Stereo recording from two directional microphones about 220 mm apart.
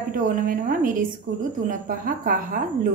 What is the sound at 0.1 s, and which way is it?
A woman's voice, 40° right (ahead or behind).